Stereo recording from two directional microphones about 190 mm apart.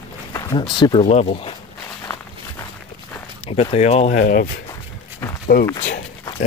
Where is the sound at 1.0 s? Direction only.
35° left (ahead or behind).